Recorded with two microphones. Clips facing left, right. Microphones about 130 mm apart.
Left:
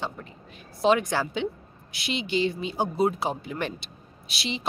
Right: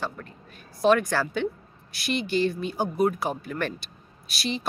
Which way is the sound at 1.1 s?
15° left (ahead or behind).